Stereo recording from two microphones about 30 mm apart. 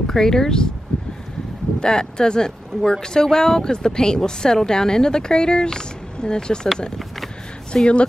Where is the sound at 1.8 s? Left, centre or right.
Left.